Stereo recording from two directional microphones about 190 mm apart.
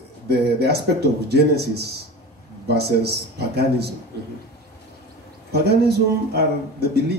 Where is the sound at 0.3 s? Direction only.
60° right (ahead or behind).